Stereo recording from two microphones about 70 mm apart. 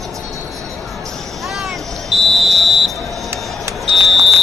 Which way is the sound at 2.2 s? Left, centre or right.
Centre.